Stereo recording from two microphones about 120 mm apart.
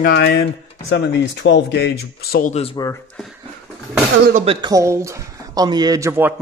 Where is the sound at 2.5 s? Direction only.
60° left (ahead or behind).